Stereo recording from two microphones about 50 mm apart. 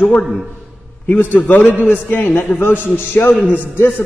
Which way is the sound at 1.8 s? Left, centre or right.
Left.